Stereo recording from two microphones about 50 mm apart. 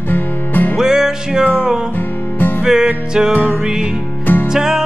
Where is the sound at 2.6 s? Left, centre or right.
Centre.